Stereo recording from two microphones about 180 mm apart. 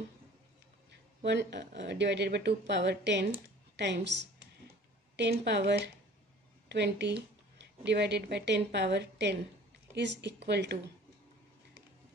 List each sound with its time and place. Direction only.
1.2 s speech: 70° right (ahead or behind)